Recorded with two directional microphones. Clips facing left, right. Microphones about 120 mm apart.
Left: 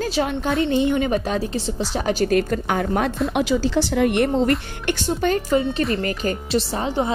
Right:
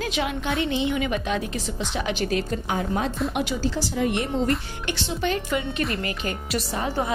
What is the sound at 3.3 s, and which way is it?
A woman's voice, 90° left.